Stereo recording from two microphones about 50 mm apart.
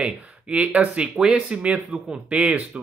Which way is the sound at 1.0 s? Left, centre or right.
Right.